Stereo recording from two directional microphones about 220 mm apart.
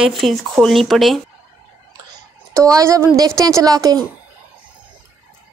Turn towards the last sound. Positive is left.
turn(degrees=-15)  # may be behind; listen again after turning